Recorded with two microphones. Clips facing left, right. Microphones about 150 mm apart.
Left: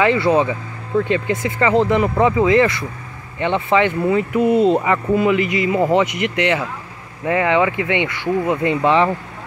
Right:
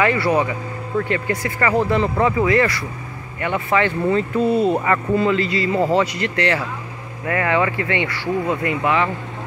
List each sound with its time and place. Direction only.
0.0 s speech: 20° left (ahead or behind)